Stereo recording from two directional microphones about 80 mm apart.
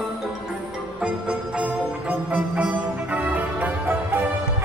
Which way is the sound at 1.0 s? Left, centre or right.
Centre.